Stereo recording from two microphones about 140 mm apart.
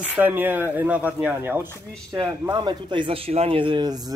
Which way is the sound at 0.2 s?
15° right (ahead or behind).